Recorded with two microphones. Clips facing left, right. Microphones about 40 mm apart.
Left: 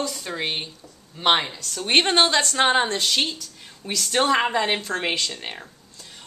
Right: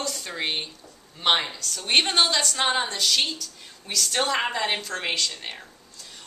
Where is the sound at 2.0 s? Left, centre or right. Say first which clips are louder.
Left 3 dB; left.